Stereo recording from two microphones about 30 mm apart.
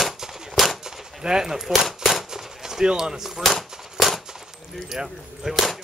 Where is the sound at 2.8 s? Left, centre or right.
Right.